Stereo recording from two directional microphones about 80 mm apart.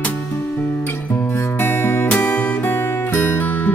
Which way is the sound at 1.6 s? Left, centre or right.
Left.